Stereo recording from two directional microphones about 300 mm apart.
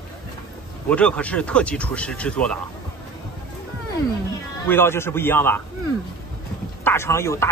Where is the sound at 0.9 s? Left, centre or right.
Centre.